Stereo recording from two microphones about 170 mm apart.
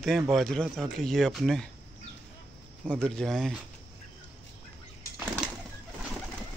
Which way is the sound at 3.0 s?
5° left (ahead or behind).